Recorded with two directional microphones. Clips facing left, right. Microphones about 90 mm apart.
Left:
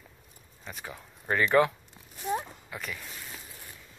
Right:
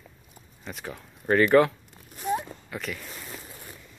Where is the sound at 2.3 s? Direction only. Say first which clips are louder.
Right 3 dB; centre (ahead or behind).